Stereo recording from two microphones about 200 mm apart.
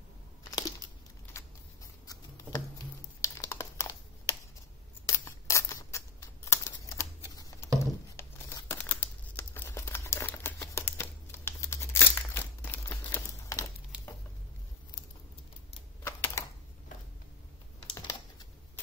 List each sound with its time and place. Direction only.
0.5 s a sound: 20° left (ahead or behind)
2.0 s crumpling: 20° left (ahead or behind)
5.0 s scissors: 15° left (ahead or behind)
7.3 s patter: 15° left (ahead or behind)
8.2 s crumpling: 10° left (ahead or behind)
13.9 s patter: 5° right (ahead or behind)
16.1 s typing: 15° left (ahead or behind)
17.9 s typing: 15° left (ahead or behind)